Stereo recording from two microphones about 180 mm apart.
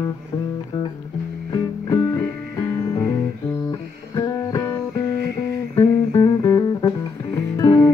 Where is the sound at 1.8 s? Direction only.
15° left (ahead or behind).